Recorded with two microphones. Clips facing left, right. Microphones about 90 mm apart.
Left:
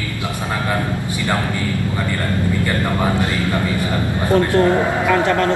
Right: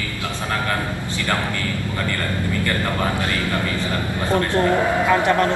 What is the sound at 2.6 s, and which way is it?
Speech, 20° left (ahead or behind).